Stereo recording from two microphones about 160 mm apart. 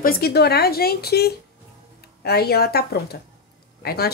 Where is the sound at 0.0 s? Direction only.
70° left (ahead or behind).